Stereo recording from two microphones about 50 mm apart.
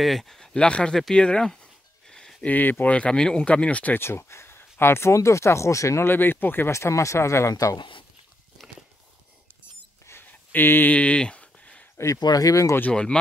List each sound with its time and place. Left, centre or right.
0.0 s speech: centre
0.5 s speech: left
1.1 s a sound: centre
2.4 s speech: left
4.0 s speech: left
5.1 s speech: left
6.0 s speech: left
6.7 s speech: left
10.2 s a sound: left
10.9 s a sound: left
12.0 s speech: left
12.9 s speech: centre